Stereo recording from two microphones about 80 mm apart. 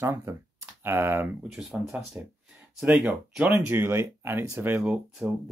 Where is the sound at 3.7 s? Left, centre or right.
Right.